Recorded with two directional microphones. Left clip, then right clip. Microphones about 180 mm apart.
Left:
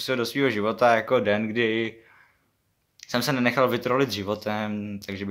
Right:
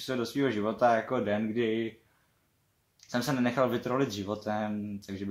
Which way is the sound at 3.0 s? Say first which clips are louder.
Left 6 dB; 25° left (ahead or behind).